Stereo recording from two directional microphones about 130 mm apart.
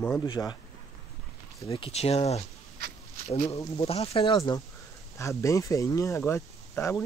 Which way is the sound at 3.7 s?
50° left (ahead or behind).